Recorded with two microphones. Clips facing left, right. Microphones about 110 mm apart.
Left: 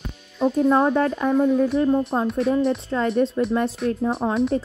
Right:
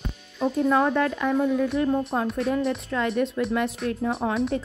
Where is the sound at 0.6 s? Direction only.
30° left (ahead or behind).